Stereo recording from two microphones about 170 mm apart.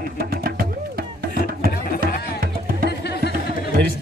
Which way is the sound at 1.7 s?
55° left (ahead or behind).